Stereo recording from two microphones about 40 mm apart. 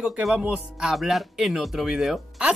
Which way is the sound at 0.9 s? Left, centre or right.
Centre.